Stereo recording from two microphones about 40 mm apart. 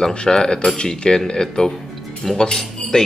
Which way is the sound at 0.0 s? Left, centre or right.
Left.